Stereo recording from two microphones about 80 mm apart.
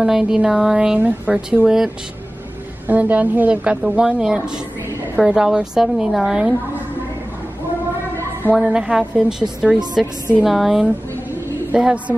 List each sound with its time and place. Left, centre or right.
0.0 s speech: centre
2.9 s speech: centre
8.5 s a woman's voice: centre
11.7 s speech: centre